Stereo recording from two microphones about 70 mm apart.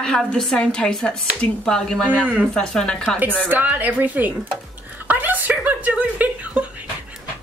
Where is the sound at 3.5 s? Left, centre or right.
Right.